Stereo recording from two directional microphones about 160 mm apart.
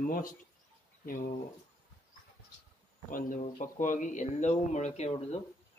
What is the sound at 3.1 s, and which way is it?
A man's voice, 55° left (ahead or behind).